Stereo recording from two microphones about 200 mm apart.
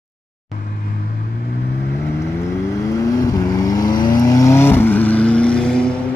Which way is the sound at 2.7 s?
15° left (ahead or behind).